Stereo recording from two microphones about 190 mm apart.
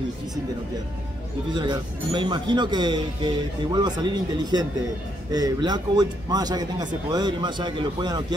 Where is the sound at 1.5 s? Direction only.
25° right (ahead or behind).